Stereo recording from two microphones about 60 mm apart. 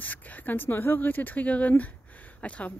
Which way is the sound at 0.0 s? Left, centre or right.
Left.